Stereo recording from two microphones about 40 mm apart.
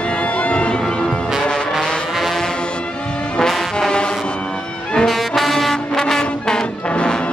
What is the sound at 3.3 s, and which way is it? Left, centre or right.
Music, centre.